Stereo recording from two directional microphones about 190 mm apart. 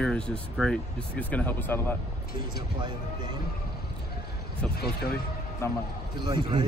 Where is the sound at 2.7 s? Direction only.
25° right (ahead or behind).